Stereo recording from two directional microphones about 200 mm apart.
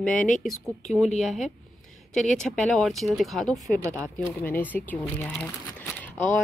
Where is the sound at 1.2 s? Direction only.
Centre (ahead or behind).